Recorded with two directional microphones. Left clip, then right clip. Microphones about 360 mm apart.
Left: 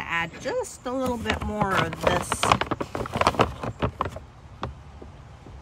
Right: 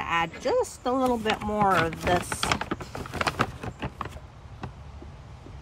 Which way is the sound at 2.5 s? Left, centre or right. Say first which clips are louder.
Left 5 dB; centre.